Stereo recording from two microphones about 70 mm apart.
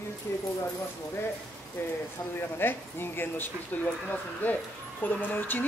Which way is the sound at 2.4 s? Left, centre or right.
Left.